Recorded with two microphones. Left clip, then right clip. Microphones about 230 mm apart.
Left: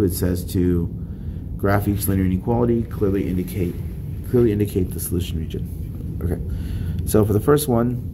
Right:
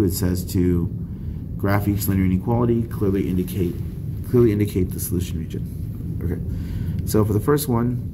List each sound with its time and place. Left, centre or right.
0.0 s speech: centre
7.1 s speech: centre